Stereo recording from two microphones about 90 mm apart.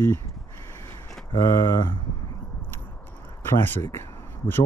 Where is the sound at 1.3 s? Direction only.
45° left (ahead or behind).